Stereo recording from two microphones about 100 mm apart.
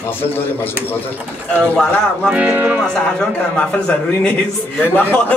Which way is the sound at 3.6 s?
10° left (ahead or behind).